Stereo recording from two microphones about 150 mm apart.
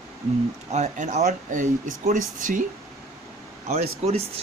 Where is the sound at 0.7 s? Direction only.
55° right (ahead or behind).